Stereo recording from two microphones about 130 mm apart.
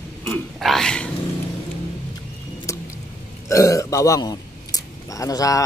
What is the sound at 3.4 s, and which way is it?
A man's voice, 25° left (ahead or behind).